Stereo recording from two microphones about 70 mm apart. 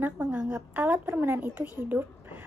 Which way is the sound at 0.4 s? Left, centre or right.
Right.